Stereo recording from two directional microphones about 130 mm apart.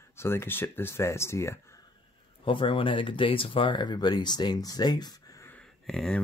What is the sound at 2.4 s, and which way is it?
Speech, 40° left (ahead or behind).